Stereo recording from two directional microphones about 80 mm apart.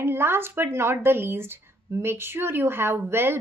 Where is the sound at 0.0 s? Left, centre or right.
Right.